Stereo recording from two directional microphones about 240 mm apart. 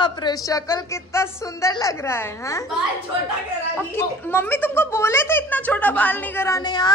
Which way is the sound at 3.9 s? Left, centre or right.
Centre.